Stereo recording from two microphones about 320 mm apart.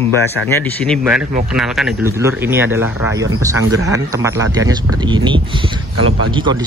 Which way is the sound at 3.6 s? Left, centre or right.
Right.